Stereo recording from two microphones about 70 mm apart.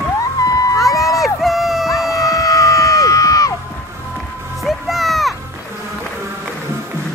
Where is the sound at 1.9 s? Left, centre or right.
Left.